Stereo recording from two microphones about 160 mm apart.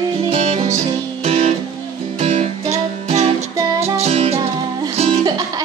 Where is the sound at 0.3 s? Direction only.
40° right (ahead or behind).